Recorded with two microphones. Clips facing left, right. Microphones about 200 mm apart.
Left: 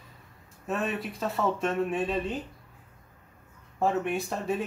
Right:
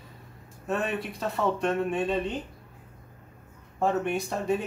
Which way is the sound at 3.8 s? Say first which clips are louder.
Right 1 dB; centre (ahead or behind).